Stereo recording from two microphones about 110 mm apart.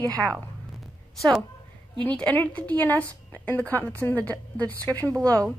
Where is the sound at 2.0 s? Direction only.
15° left (ahead or behind).